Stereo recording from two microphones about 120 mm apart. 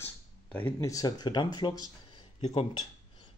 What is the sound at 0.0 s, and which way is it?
Speech, 15° left (ahead or behind).